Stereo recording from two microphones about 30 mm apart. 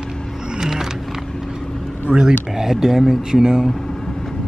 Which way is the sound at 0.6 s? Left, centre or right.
Centre.